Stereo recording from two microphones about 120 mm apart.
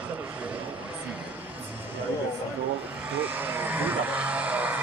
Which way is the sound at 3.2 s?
15° right (ahead or behind).